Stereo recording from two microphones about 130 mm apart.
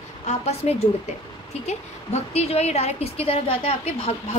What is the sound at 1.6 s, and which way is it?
A woman's voice, 55° left (ahead or behind).